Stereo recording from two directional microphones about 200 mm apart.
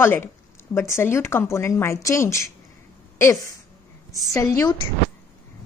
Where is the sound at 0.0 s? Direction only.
10° left (ahead or behind).